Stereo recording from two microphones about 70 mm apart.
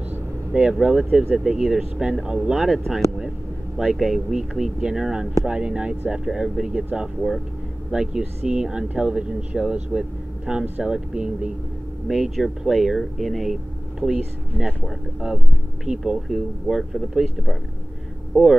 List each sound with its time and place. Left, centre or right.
0.5 s speech: centre
7.2 s speech: centre